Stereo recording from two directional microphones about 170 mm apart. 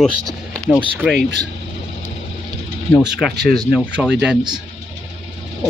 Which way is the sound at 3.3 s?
70° right (ahead or behind).